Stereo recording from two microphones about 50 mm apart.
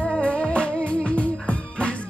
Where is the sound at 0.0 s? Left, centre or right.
Left.